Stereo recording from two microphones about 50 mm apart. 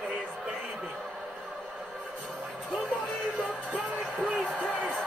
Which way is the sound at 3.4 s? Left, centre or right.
Right.